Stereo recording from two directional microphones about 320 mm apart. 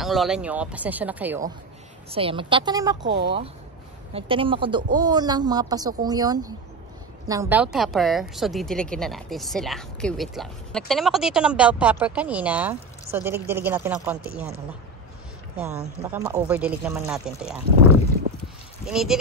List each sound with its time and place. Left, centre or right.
0.0 s a woman's voice: centre
2.0 s speech: centre
3.1 s speech: right
4.1 s a woman's voice: centre
15.5 s a woman's voice: centre
18.9 s a woman's voice: centre